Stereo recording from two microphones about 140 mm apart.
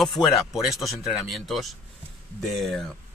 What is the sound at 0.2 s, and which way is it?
Speech, 30° left (ahead or behind).